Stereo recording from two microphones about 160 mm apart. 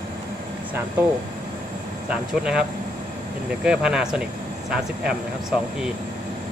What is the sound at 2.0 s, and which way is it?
Speech, 5° right (ahead or behind).